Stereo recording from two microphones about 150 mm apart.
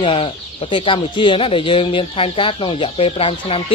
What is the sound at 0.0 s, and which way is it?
Speech, 40° left (ahead or behind).